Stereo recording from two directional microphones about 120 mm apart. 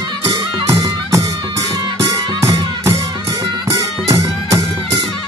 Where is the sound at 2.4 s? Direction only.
25° right (ahead or behind).